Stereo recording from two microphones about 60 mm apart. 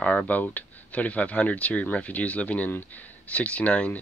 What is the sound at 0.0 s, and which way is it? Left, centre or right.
Speech, left.